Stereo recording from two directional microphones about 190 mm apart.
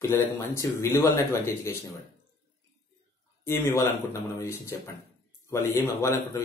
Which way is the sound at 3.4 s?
15° left (ahead or behind).